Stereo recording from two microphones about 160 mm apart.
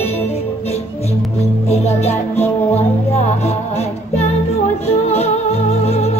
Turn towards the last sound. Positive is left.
turn(degrees=40)  # may be behind; listen again after turning